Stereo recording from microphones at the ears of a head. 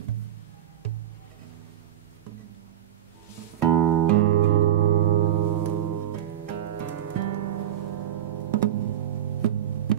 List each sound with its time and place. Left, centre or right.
3.3 s music: right